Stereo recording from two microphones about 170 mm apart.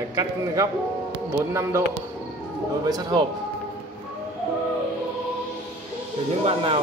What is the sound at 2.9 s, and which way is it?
Speech, 25° right (ahead or behind).